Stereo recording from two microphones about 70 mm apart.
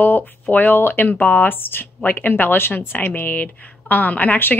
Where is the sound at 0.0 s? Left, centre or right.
Left.